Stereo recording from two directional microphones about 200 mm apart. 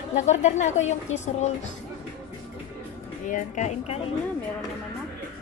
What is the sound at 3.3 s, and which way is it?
Speech, 35° left (ahead or behind).